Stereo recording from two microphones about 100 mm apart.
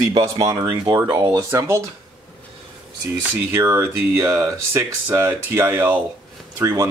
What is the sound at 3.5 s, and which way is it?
Speech, 25° right (ahead or behind).